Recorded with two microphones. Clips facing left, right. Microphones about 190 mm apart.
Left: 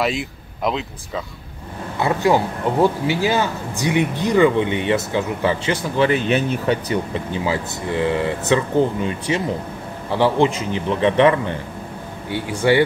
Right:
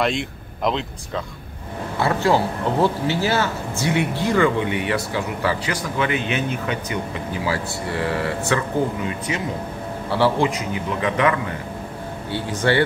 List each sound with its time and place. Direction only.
0.0 s speech: 5° left (ahead or behind)
2.0 s speech: 15° left (ahead or behind); by 7.4 s 35° left (ahead or behind)
7.4 s speech: 20° left (ahead or behind)
12.3 s speech: 10° left (ahead or behind)